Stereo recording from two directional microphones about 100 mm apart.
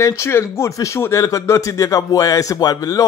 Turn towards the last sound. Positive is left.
turn(degrees=35)  # may be behind; listen again after turning